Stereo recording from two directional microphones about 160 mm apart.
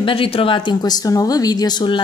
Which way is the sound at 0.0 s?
35° left (ahead or behind).